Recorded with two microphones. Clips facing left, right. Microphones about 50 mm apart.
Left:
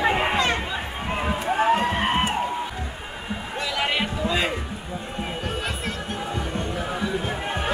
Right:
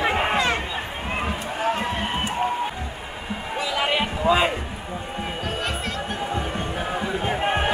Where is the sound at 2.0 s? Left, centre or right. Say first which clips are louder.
Left 4 dB; left.